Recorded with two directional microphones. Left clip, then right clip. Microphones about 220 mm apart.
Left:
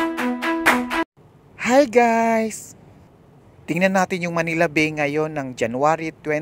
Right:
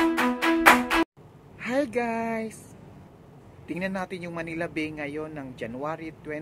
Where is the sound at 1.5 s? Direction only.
40° left (ahead or behind).